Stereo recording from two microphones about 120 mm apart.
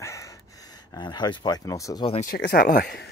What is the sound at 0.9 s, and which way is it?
Speech, 35° left (ahead or behind).